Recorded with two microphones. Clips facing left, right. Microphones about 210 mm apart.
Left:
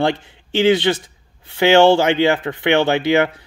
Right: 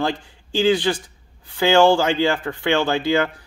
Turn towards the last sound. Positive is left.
turn(degrees=20)  # may be behind; listen again after turning